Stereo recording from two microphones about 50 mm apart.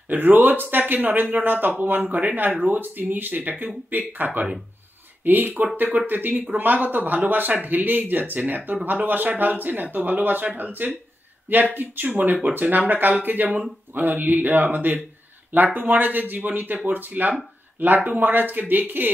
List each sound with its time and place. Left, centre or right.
0.1 s speech: right